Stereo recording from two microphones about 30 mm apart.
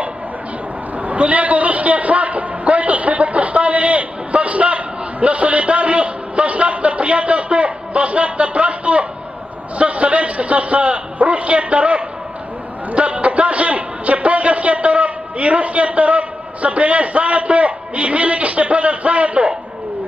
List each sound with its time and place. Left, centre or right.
0.9 s a man's voice: right